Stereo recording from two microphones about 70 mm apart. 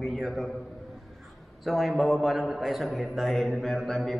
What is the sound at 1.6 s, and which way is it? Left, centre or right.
A man's voice, centre.